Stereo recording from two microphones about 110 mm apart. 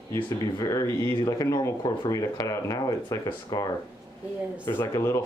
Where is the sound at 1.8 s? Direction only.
35° left (ahead or behind).